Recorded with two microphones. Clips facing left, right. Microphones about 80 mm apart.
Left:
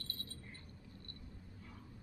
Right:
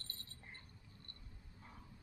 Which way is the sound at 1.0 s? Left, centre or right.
Right.